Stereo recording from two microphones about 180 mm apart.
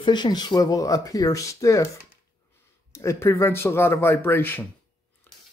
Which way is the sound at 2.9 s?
15° left (ahead or behind).